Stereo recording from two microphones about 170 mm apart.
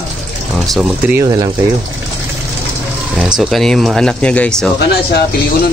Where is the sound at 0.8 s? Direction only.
10° right (ahead or behind).